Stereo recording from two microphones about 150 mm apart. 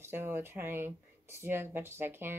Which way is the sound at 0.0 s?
15° right (ahead or behind).